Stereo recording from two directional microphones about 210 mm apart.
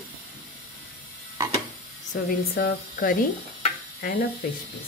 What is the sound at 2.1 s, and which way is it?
Speech, 45° left (ahead or behind).